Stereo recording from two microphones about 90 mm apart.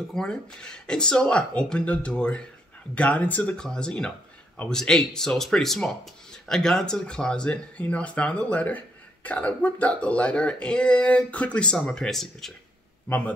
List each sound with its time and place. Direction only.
0.1 s speech: 5° left (ahead or behind)
13.1 s speech: 15° left (ahead or behind)